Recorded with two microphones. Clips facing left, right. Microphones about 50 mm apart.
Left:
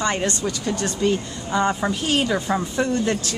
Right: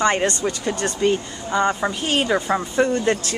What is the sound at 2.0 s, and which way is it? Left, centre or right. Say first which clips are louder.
Speech: right 2 dB; right.